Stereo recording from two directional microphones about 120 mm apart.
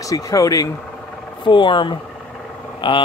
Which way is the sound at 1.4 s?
45° left (ahead or behind).